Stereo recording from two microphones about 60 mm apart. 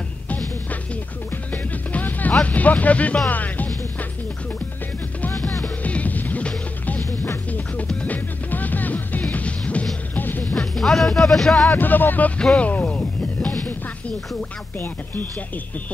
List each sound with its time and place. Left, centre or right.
1.5 s music: left
2.4 s speech: left
5.9 s music: left
10.5 s speech: centre
11.7 s speech: left
12.5 s music: left